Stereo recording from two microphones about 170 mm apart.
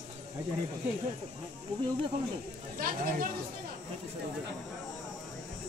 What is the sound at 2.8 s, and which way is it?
Speech, 55° right (ahead or behind).